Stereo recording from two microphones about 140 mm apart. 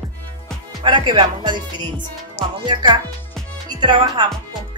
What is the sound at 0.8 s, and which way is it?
Speech, 35° right (ahead or behind).